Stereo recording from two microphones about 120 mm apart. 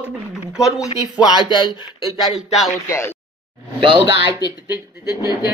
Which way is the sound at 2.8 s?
20° left (ahead or behind).